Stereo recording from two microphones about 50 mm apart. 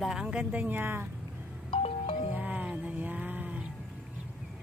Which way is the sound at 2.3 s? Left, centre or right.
Right.